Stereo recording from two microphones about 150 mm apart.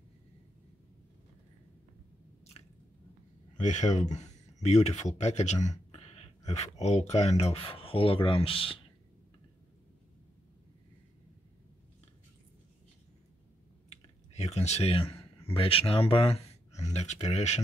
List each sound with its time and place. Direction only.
3.5 s speech: 50° left (ahead or behind)
14.3 s speech: 45° left (ahead or behind)
16.9 s speech: 50° left (ahead or behind)